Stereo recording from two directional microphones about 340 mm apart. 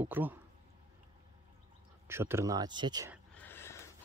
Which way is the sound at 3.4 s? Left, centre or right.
Centre.